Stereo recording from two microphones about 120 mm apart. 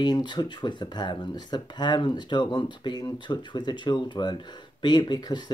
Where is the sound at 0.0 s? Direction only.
40° left (ahead or behind).